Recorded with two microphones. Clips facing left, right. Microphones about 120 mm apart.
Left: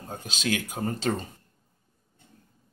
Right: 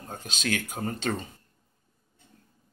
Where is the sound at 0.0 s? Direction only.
30° left (ahead or behind).